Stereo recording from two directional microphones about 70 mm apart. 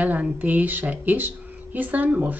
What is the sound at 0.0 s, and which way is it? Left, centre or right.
Speech, right.